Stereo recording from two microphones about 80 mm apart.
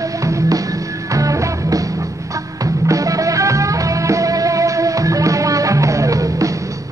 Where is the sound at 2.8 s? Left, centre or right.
Right.